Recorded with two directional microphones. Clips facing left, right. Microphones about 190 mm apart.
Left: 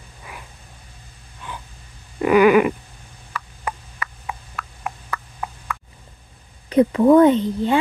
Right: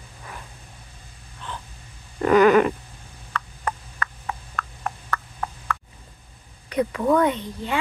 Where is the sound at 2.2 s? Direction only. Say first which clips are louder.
Left 2 dB; 10° left (ahead or behind).